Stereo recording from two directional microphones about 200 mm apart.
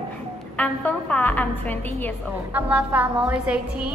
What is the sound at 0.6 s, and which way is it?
A woman's voice, 5° left (ahead or behind).